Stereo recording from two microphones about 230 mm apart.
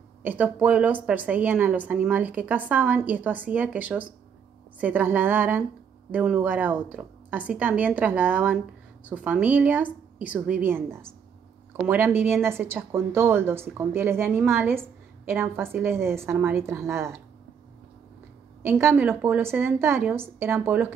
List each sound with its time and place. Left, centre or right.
0.2 s a woman's voice: centre
18.7 s a woman's voice: centre